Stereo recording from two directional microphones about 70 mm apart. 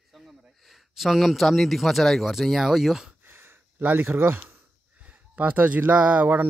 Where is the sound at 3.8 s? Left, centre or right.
Right.